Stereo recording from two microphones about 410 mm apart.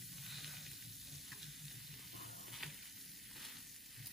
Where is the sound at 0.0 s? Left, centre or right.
Centre.